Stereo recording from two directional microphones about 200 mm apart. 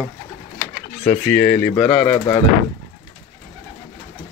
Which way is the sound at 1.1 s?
5° left (ahead or behind).